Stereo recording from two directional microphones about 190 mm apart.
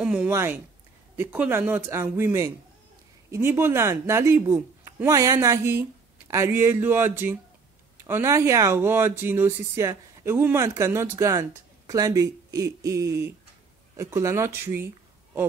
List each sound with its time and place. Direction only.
0.0 s speech: 5° right (ahead or behind)